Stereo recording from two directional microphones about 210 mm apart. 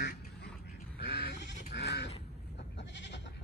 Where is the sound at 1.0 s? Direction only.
50° left (ahead or behind).